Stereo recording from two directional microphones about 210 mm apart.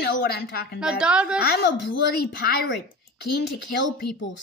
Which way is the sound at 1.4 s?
50° left (ahead or behind).